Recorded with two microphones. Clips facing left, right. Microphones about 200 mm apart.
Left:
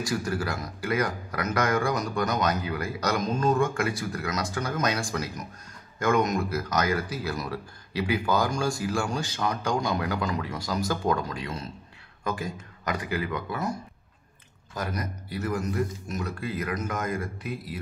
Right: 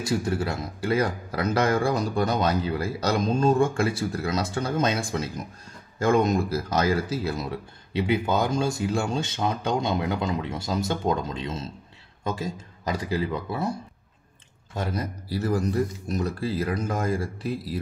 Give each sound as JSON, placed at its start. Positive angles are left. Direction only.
{"t": 0.0, "sound": "speech", "side_deg": -25}
{"t": 14.7, "sound": "a man's voice", "side_deg": -25}